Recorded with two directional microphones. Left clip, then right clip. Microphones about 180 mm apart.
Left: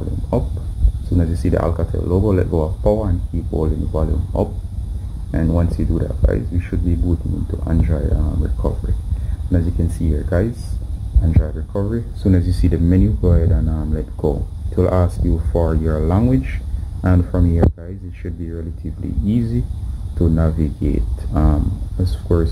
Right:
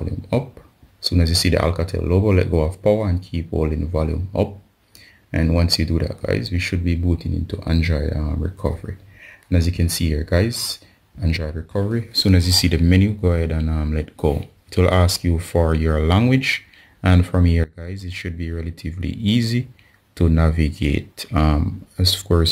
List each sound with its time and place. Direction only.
1.1 s speech: 25° right (ahead or behind)